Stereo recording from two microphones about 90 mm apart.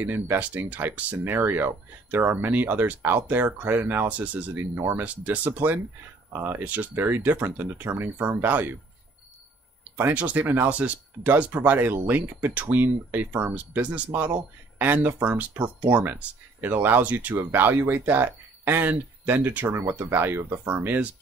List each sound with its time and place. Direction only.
0.0 s speech: 20° right (ahead or behind)
4.7 s speech: 30° right (ahead or behind)
5.0 s speech: 15° right (ahead or behind)
9.9 s speech: 20° right (ahead or behind)